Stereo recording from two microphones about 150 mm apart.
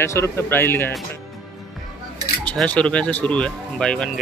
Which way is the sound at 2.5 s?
5° left (ahead or behind).